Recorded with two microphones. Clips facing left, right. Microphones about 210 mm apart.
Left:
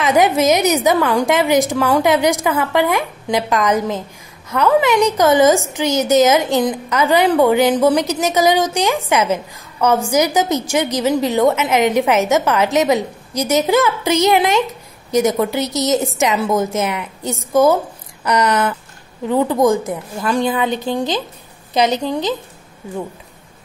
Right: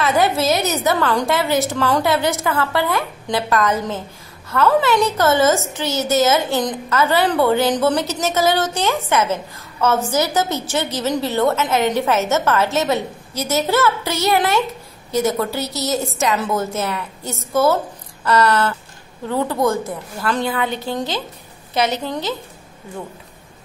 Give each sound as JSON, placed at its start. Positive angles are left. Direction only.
{"t": 0.0, "sound": "a woman's voice", "side_deg": 15}